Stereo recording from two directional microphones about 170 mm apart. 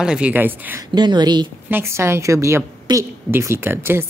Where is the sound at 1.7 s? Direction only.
15° right (ahead or behind).